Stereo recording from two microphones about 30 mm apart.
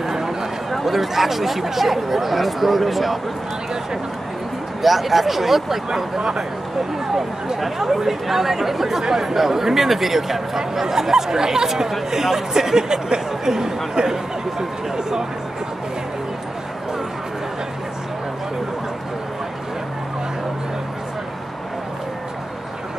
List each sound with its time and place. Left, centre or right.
0.0 s a sound: centre
0.7 s speech: centre
4.8 s speech: centre
7.6 s speech: centre